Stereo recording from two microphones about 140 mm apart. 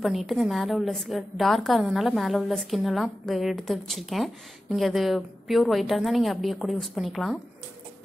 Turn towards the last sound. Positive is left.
turn(degrees=0)  # may be behind; listen again after turning